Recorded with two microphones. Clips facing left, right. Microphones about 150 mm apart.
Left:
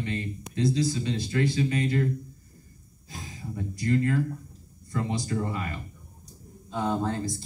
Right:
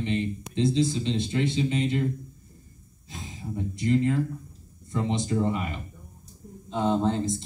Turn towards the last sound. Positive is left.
turn(degrees=-20)  # may be behind; listen again after turning